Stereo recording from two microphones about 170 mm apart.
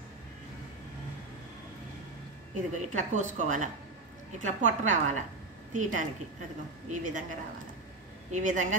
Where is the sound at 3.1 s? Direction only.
45° right (ahead or behind).